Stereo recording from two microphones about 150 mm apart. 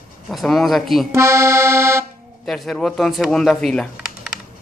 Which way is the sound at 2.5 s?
Centre (ahead or behind).